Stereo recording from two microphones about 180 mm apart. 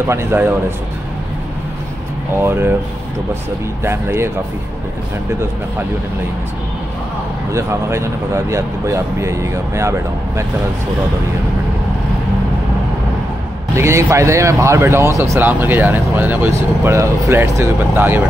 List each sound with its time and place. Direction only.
0.0 s speech: 15° right (ahead or behind)
2.3 s speech: 15° right (ahead or behind)
3.8 s speech: 15° right (ahead or behind)
7.5 s speech: 15° right (ahead or behind)
13.7 s speech: 15° right (ahead or behind)